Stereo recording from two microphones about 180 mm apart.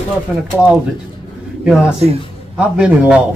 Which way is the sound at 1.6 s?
5° right (ahead or behind).